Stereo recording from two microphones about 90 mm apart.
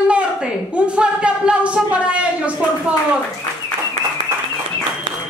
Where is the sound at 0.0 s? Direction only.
10° right (ahead or behind).